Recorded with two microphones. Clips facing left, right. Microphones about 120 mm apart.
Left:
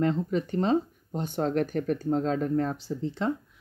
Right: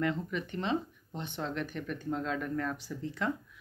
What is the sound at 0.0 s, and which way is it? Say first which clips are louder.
Speech: left 7 dB; 35° left (ahead or behind).